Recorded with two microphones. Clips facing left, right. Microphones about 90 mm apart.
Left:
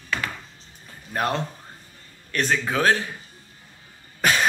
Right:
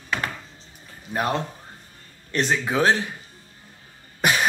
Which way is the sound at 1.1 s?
10° right (ahead or behind).